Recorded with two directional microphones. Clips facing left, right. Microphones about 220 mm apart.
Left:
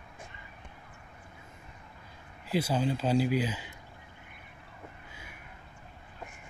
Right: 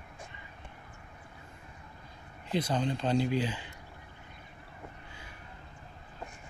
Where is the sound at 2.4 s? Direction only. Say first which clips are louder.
Left 2 dB; 5° left (ahead or behind).